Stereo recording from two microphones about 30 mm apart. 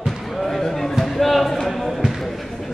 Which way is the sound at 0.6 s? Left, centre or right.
Centre.